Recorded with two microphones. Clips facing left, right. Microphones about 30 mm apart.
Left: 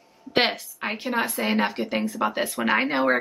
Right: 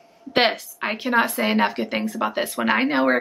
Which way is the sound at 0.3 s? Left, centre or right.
Centre.